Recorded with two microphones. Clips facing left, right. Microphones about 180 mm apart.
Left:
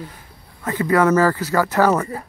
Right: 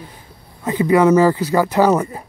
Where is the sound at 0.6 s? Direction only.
15° right (ahead or behind).